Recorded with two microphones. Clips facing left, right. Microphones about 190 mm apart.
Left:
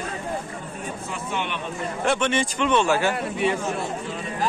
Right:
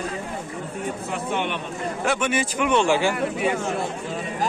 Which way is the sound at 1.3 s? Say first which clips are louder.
Right 3 dB; 50° right (ahead or behind).